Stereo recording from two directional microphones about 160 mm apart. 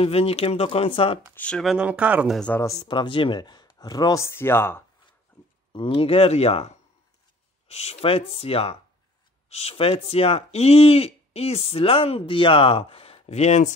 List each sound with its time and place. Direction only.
0.0 s speech: 40° left (ahead or behind)
1.3 s speech: 5° left (ahead or behind); by 2.3 s 10° right (ahead or behind)
2.3 s speech: 5° left (ahead or behind)
2.6 s speech: 20° left (ahead or behind)
5.9 s speech: 35° left (ahead or behind)